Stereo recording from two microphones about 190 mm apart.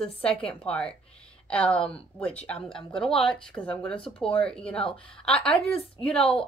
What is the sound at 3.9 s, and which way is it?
Speech, 30° left (ahead or behind).